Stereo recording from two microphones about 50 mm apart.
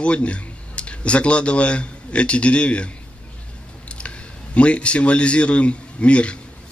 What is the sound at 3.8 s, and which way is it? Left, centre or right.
A man's voice, left.